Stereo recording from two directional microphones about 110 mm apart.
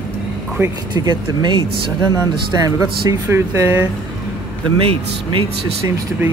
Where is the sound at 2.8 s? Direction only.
30° right (ahead or behind).